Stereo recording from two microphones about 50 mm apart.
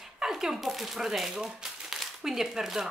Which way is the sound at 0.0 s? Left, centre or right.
Centre.